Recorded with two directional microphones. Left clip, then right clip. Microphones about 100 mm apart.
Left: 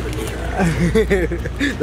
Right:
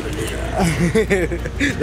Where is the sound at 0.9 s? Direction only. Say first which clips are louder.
Left 1 dB; centre (ahead or behind).